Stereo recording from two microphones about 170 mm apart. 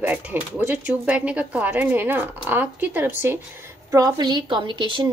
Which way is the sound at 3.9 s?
25° right (ahead or behind).